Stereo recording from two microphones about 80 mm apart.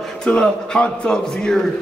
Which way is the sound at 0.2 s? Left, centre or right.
Centre.